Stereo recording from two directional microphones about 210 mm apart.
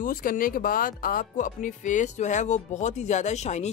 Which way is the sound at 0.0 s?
40° left (ahead or behind).